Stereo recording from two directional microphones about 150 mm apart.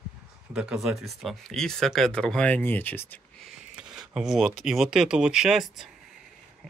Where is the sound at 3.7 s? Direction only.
5° right (ahead or behind).